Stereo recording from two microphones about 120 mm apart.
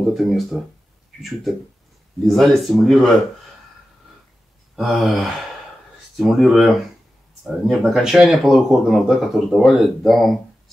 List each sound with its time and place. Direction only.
0.0 s speech: centre (ahead or behind)
2.2 s speech: centre (ahead or behind)
4.7 s speech: centre (ahead or behind)